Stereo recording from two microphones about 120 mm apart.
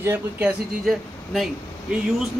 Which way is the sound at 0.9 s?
5° right (ahead or behind).